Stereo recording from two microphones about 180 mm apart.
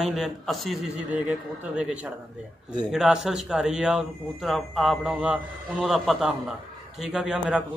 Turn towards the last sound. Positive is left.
turn(degrees=-5)  # may be behind; listen again after turning